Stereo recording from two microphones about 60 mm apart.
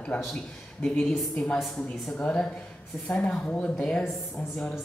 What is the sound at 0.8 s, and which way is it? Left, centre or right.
Speech, centre.